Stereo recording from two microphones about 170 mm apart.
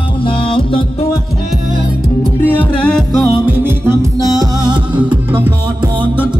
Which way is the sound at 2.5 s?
5° left (ahead or behind).